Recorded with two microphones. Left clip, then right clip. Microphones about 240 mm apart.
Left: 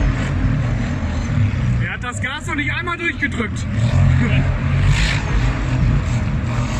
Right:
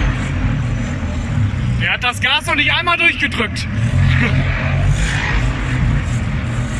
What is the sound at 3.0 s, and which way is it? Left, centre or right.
Speech, right.